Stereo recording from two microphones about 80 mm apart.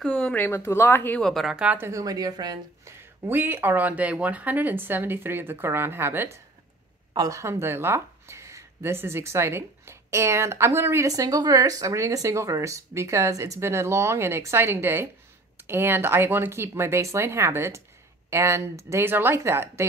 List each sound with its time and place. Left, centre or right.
0.0 s speech: centre
0.3 s speech: left
1.2 s a woman's voice: centre
1.8 s a woman's voice: right
3.3 s speech: right
7.2 s speech: right
11.1 s speech: right